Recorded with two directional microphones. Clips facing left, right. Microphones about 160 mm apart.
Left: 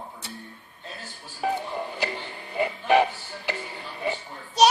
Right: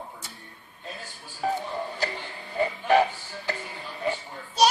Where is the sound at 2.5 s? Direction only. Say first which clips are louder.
Even; 15° left (ahead or behind).